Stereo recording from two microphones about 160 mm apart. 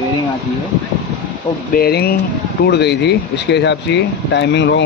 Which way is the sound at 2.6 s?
90° left.